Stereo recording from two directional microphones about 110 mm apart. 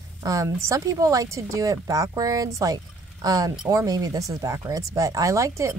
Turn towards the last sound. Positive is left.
turn(degrees=-30)  # may be behind; listen again after turning